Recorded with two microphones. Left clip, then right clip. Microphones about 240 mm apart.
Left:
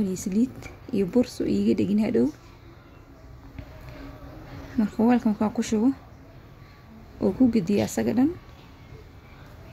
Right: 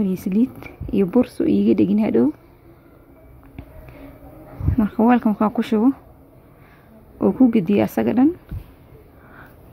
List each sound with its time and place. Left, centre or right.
0.0 s speech: centre
4.7 s speech: centre
7.2 s speech: centre